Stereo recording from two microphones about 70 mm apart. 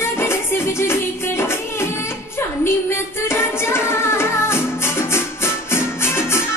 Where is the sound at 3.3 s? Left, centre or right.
Left.